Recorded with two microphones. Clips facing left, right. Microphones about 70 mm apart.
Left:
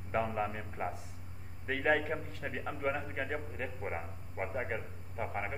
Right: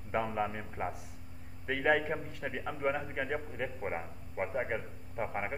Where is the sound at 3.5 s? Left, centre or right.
Right.